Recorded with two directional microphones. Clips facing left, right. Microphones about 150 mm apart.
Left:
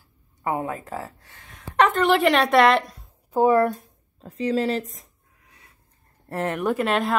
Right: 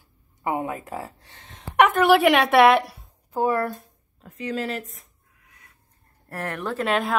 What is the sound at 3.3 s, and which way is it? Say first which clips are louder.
Speech: left 5 dB; 20° left (ahead or behind).